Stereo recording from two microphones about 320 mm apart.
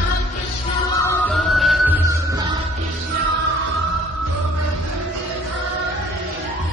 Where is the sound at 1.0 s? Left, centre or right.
Centre.